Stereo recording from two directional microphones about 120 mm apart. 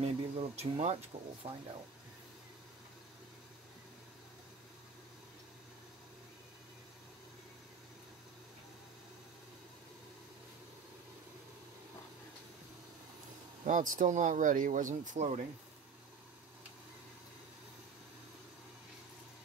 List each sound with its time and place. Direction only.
0.0 s speech: 60° right (ahead or behind)
13.7 s speech: 90° right